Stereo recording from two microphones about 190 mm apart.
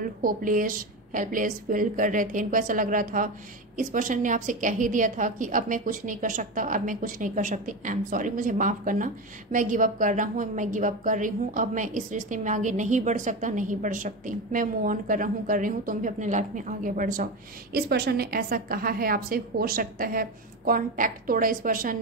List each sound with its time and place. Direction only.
0.0 s a woman's voice: 50° right (ahead or behind)
17.7 s a woman's voice: 55° right (ahead or behind)